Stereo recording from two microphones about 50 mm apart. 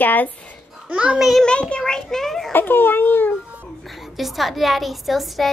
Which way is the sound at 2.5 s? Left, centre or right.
Left.